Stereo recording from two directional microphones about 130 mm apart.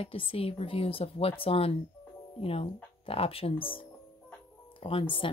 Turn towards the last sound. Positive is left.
turn(degrees=45)  # may be behind; listen again after turning